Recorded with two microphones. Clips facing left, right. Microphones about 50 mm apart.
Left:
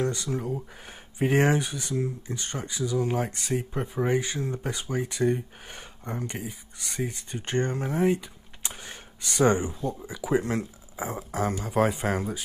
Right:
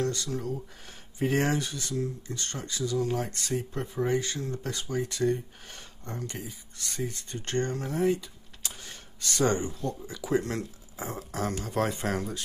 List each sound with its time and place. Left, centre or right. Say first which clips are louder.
0.0 s speech: left 2 dB; centre